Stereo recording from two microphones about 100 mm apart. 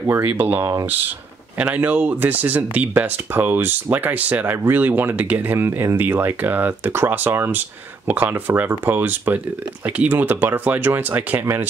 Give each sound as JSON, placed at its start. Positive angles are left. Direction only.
{"t": 0.0, "sound": "speech", "side_deg": -20}